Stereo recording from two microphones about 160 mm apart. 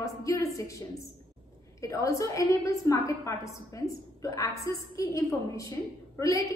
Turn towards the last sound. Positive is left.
turn(degrees=20)  # may be behind; listen again after turning